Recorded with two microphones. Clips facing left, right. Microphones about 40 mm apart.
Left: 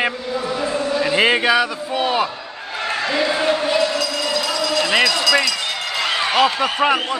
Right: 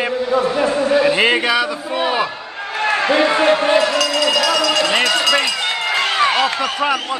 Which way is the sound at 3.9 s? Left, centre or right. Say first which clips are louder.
Right 5 dB; right.